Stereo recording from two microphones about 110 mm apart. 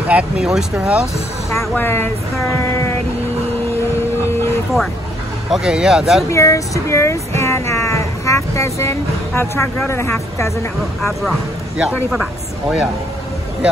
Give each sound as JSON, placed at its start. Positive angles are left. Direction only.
{"t": 0.1, "sound": "speech", "side_deg": -10}
{"t": 1.5, "sound": "speech", "side_deg": 25}
{"t": 5.5, "sound": "speech", "side_deg": -5}
{"t": 6.3, "sound": "speech", "side_deg": 30}
{"t": 11.0, "sound": "speech", "side_deg": 0}